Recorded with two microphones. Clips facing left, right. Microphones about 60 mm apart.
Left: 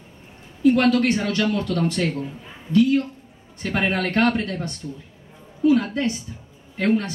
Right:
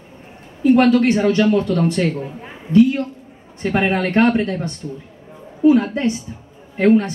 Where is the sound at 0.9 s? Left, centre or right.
Right.